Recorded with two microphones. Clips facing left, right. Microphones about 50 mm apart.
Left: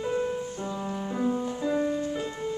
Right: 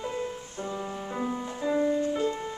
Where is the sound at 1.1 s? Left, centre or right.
Centre.